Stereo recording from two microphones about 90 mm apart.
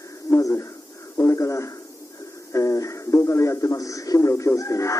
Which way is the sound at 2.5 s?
35° left (ahead or behind).